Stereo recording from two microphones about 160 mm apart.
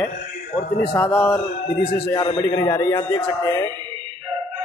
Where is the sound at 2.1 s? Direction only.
25° left (ahead or behind).